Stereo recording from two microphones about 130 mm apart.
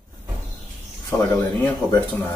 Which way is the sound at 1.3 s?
15° left (ahead or behind).